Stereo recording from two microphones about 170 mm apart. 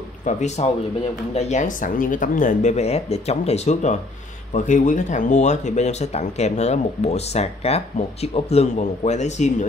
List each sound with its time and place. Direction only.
0.2 s speech: 45° left (ahead or behind)